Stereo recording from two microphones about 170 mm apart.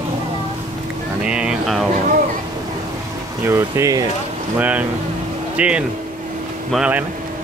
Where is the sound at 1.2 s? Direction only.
5° right (ahead or behind).